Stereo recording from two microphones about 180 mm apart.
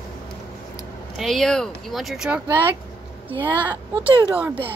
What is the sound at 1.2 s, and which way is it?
Speech, centre (ahead or behind).